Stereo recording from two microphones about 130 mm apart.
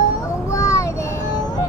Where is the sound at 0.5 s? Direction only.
25° left (ahead or behind).